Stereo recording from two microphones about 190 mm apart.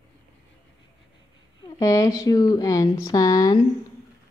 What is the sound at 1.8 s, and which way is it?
Speech, 15° left (ahead or behind).